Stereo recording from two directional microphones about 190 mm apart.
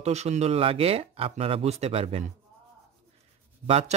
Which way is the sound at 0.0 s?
35° right (ahead or behind).